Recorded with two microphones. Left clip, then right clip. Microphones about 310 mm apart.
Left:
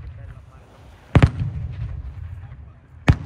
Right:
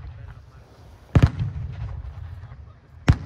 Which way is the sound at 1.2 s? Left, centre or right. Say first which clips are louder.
Left 4 dB; right.